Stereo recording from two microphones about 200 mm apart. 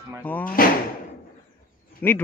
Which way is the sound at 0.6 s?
45° left (ahead or behind).